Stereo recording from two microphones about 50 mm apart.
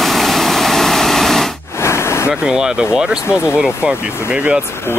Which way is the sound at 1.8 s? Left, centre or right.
Left.